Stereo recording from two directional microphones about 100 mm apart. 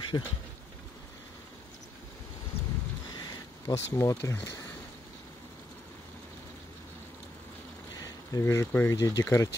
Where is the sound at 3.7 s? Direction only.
30° left (ahead or behind).